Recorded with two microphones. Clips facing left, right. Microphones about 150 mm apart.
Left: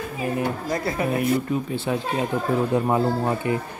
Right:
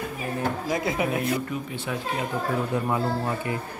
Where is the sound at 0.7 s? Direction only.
5° right (ahead or behind).